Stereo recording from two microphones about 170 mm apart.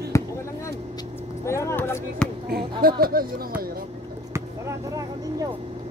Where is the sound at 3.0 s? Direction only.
60° right (ahead or behind).